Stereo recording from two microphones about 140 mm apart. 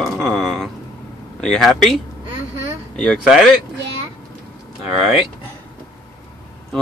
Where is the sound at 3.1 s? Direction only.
Centre (ahead or behind).